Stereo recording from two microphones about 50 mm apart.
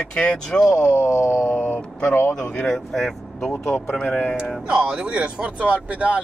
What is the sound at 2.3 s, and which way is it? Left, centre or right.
Speech, centre.